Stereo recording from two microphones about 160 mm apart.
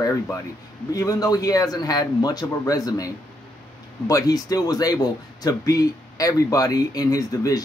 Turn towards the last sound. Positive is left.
turn(degrees=20)  # may be behind; listen again after turning